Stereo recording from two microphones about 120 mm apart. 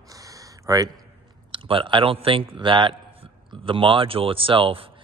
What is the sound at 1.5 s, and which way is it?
Speech, 45° right (ahead or behind).